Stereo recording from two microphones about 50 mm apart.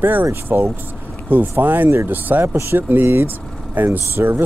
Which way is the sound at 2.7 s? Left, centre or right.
Right.